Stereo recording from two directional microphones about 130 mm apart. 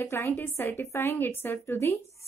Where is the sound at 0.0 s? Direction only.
20° left (ahead or behind).